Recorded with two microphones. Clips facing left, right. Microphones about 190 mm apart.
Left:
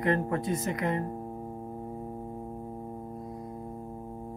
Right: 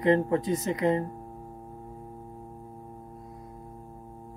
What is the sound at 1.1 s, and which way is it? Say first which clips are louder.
Music: left 5 dB; 25° left (ahead or behind).